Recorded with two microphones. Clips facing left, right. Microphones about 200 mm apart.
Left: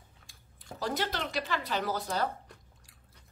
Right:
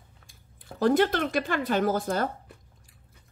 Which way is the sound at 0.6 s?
55° right (ahead or behind).